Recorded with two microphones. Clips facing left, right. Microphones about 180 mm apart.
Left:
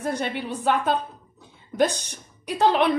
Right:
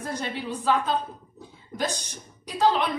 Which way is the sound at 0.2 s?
60° left (ahead or behind).